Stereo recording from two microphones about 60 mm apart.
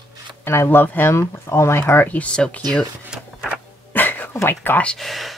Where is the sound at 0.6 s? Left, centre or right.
Left.